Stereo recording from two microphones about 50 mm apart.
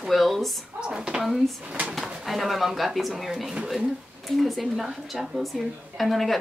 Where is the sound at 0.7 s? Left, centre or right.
Centre.